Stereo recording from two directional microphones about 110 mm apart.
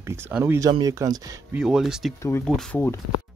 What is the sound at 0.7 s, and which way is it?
Speech, 40° right (ahead or behind).